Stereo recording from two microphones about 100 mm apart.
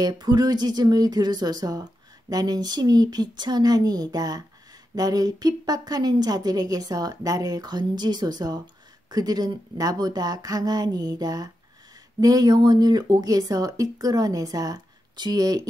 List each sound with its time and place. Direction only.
0.0 s a woman's voice: 45° right (ahead or behind)